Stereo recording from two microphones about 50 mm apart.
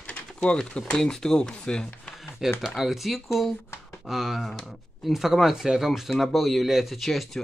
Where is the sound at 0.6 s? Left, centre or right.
Centre.